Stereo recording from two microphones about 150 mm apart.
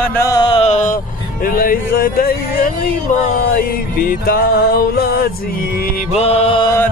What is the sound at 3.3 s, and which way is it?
Music, 70° left (ahead or behind).